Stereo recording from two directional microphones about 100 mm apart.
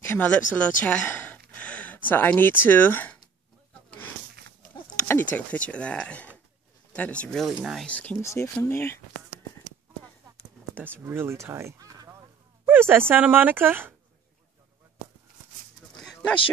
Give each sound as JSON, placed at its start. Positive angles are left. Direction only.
{"t": 0.0, "sound": "speech", "side_deg": 20}
{"t": 3.9, "sound": "a sound", "side_deg": 20}
{"t": 5.0, "sound": "speech", "side_deg": 20}
{"t": 8.2, "sound": "speech", "side_deg": 30}
{"t": 11.1, "sound": "speech", "side_deg": -25}
{"t": 12.6, "sound": "speech", "side_deg": -20}